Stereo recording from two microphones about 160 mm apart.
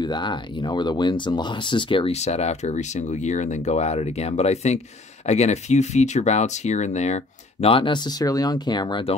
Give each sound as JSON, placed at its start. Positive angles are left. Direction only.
{"t": 0.0, "sound": "speech", "side_deg": 30}
{"t": 7.6, "sound": "speech", "side_deg": 35}